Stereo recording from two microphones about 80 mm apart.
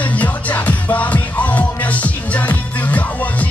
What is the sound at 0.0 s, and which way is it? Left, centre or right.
Music, centre.